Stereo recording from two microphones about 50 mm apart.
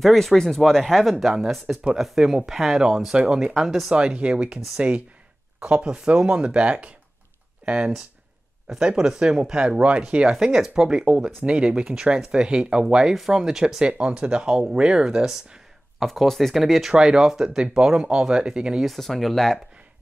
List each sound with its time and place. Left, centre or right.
0.0 s speech: centre
1.2 s speech: centre
3.9 s speech: right
10.3 s speech: centre
10.7 s speech: centre
16.1 s speech: centre
16.9 s speech: centre
18.8 s speech: centre